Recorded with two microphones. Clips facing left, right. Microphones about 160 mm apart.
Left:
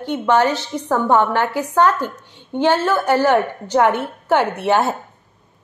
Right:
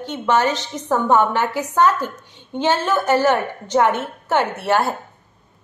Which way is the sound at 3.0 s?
10° left (ahead or behind).